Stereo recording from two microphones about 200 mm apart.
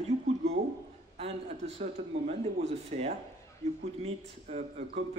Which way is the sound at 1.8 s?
30° right (ahead or behind).